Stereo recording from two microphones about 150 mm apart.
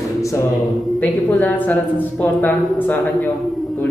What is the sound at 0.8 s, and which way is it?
Speech, 5° left (ahead or behind).